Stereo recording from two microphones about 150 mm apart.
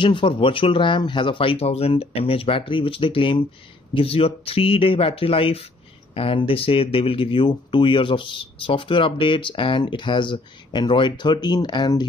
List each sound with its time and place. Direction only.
0.0 s speech: 35° left (ahead or behind)